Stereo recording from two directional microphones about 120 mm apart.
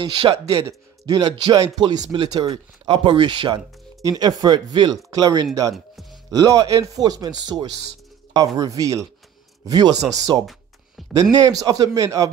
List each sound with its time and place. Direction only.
0.0 s speech: 45° right (ahead or behind)
0.5 s speech: 25° right (ahead or behind)
1.1 s speech: 40° right (ahead or behind)
11.0 s a sound: centre (ahead or behind)
11.3 s speech: 30° right (ahead or behind)